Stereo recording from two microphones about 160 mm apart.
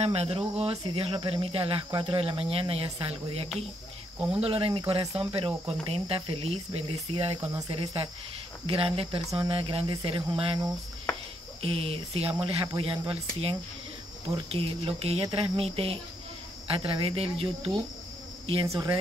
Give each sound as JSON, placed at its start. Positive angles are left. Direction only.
{"t": 0.0, "sound": "speech", "side_deg": -40}
{"t": 7.3, "sound": "speech", "side_deg": -20}
{"t": 7.7, "sound": "speech", "side_deg": -35}
{"t": 18.7, "sound": "speech", "side_deg": -25}